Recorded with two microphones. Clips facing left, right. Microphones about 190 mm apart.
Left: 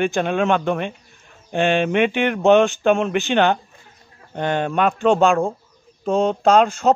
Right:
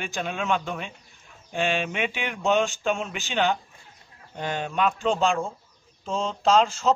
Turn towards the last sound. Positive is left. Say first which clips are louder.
# left 5 dB
turn(degrees=60)  # may be behind; listen again after turning